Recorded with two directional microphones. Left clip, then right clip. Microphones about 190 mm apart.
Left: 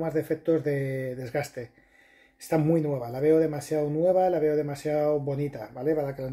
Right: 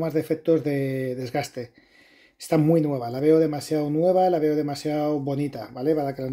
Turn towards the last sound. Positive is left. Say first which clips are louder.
# right 3 dB
turn(degrees=-45)  # may be behind; listen again after turning